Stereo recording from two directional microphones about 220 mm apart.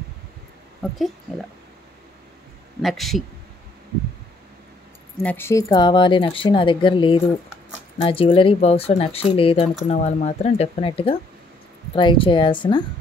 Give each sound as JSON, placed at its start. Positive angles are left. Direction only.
{"t": 2.8, "sound": "a man's voice", "side_deg": 0}
{"t": 5.2, "sound": "speech", "side_deg": 10}